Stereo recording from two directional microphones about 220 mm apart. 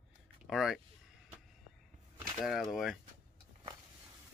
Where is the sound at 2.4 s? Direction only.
Centre (ahead or behind).